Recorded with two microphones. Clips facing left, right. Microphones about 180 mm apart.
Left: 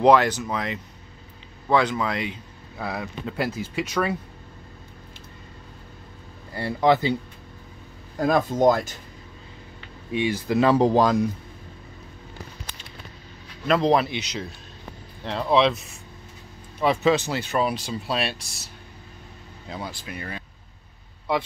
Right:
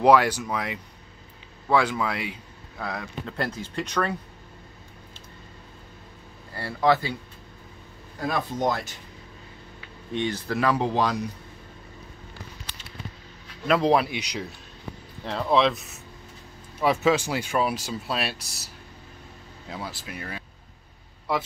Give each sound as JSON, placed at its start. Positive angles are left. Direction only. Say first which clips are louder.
{"t": 0.0, "sound": "speech", "louder": "left 1 dB", "side_deg": -10}
{"t": 2.8, "sound": "speech", "louder": "left 3 dB", "side_deg": 5}
{"t": 6.5, "sound": "speech", "louder": "left 2 dB", "side_deg": 20}
{"t": 8.2, "sound": "speech", "louder": "left 7 dB", "side_deg": 45}
{"t": 10.1, "sound": "speech", "louder": "left 4 dB", "side_deg": 10}
{"t": 10.6, "sound": "speech", "louder": "left 6 dB", "side_deg": 30}
{"t": 11.0, "sound": "speech", "louder": "left 6 dB", "side_deg": 45}
{"t": 13.7, "sound": "speech", "louder": "left 1 dB", "side_deg": -5}
{"t": 16.8, "sound": "speech", "louder": "left 1 dB", "side_deg": -5}
{"t": 19.7, "sound": "speech", "louder": "left 2 dB", "side_deg": -5}